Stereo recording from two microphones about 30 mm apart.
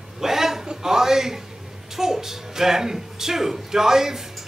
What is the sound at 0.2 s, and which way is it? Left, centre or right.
Chuckle, centre.